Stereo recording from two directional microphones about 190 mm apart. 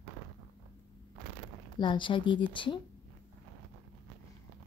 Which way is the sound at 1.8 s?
25° left (ahead or behind).